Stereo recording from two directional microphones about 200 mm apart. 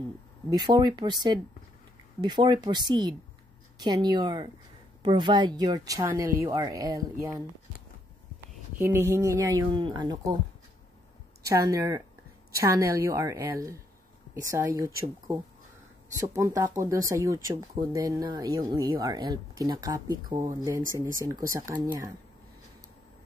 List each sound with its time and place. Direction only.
0.5 s speech: 20° right (ahead or behind)
8.7 s speech: 10° right (ahead or behind)
11.4 s speech: 15° right (ahead or behind)
16.2 s speech: 15° right (ahead or behind)